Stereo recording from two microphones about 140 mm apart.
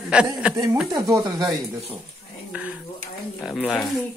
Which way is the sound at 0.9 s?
25° right (ahead or behind).